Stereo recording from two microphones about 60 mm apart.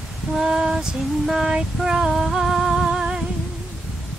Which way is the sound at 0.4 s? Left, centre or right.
Centre.